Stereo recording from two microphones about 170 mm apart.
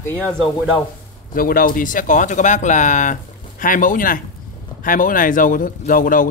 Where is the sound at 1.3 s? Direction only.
55° left (ahead or behind).